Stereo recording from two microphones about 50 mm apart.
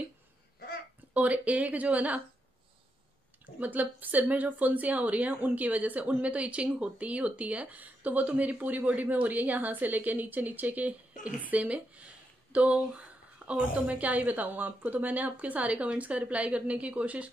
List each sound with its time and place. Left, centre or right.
1.1 s a woman's voice: right
3.5 s a woman's voice: right
13.5 s a woman's voice: right